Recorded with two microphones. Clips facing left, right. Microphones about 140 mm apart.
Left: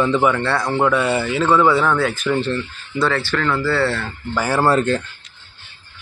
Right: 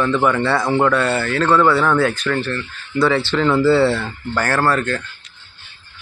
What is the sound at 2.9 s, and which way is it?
Speech, 10° right (ahead or behind).